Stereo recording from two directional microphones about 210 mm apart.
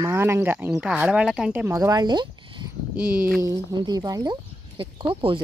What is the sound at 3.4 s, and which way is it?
Speech, 15° right (ahead or behind).